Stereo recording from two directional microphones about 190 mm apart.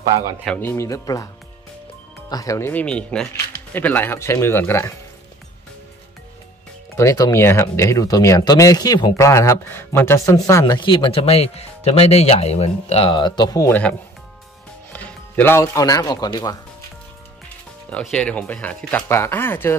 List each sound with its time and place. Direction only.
0.5 s speech: 10° left (ahead or behind)
7.0 s speech: 15° left (ahead or behind)
18.1 s speech: 5° left (ahead or behind)